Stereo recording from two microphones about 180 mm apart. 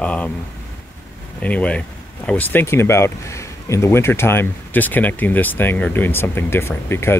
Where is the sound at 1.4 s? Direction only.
5° left (ahead or behind).